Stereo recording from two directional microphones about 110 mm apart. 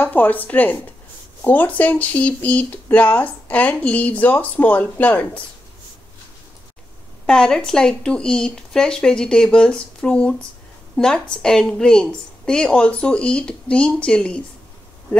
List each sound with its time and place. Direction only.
0.0 s speech: 15° left (ahead or behind)
7.2 s speech: 5° left (ahead or behind)